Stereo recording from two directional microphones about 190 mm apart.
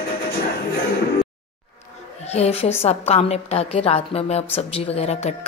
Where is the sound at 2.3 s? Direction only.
35° left (ahead or behind).